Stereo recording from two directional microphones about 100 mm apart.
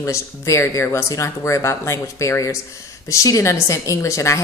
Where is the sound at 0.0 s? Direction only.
30° left (ahead or behind).